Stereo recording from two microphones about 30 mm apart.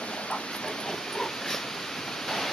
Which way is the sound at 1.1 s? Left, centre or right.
Centre.